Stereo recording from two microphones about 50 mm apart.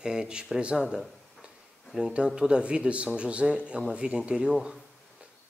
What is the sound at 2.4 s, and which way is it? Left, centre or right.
Speech, centre.